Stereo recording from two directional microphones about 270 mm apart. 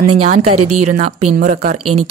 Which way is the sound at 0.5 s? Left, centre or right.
Right.